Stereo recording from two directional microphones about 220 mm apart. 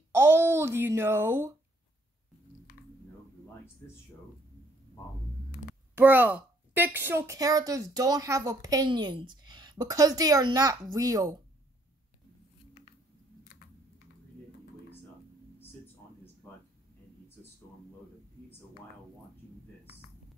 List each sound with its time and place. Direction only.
0.1 s speech: 10° right (ahead or behind)
5.9 s a woman's voice: 10° right (ahead or behind)
13.5 s typing: 40° left (ahead or behind)